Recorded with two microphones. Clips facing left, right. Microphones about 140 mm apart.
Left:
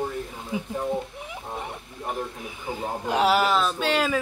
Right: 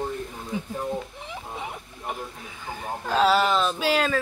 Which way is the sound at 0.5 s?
10° left (ahead or behind).